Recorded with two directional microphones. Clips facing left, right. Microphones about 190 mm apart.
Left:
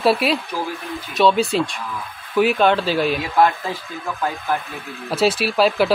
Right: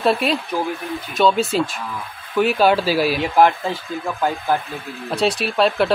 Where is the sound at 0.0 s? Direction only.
5° left (ahead or behind).